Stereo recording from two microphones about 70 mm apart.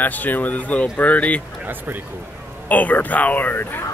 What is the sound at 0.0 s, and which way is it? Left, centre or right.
Speech, left.